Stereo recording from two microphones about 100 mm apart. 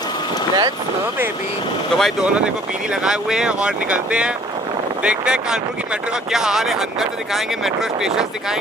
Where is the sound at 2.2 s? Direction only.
10° right (ahead or behind).